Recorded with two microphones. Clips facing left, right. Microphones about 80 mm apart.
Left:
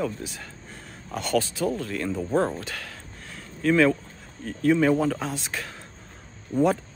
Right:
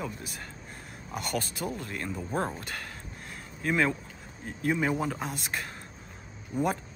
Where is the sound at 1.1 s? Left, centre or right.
Centre.